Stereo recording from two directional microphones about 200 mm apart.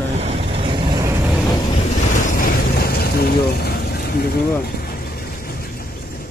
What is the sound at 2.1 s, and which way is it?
Vehicle, 45° left (ahead or behind).